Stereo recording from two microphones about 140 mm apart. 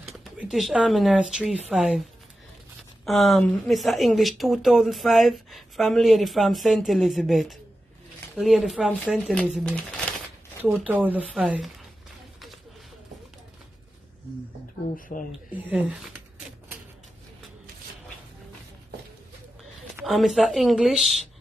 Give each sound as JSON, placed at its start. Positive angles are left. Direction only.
{"t": 0.4, "sound": "speech", "side_deg": 0}
{"t": 3.1, "sound": "speech", "side_deg": 0}
{"t": 10.9, "sound": "speech", "side_deg": -10}
{"t": 15.0, "sound": "speech", "side_deg": 80}
{"t": 15.5, "sound": "speech", "side_deg": -10}
{"t": 20.1, "sound": "speech", "side_deg": 0}